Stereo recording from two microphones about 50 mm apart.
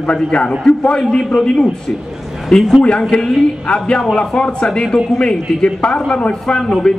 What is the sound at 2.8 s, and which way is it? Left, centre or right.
A man's voice, centre.